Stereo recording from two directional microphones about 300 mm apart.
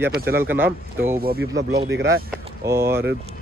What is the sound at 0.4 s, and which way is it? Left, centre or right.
Speech, centre.